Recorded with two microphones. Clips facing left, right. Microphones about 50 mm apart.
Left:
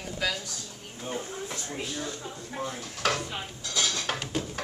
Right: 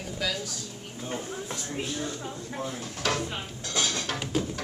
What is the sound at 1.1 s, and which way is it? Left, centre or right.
Speech, centre.